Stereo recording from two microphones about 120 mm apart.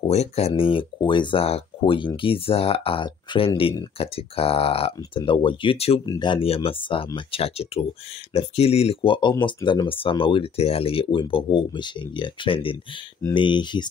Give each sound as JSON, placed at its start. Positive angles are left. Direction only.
{"t": 0.0, "sound": "speech", "side_deg": 60}
{"t": 6.0, "sound": "speech", "side_deg": 40}
{"t": 6.4, "sound": "speech", "side_deg": 50}